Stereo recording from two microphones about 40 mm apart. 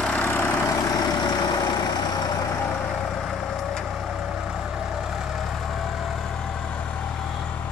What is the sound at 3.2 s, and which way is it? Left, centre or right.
Vehicle, centre.